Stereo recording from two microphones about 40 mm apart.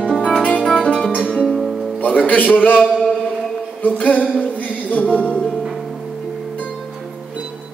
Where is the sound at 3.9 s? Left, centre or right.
Left.